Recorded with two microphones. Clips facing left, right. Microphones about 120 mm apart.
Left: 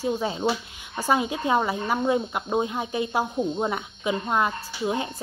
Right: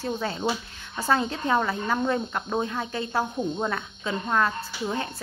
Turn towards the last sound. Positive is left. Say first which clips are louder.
# left 2 dB
turn(degrees=15)  # may be behind; listen again after turning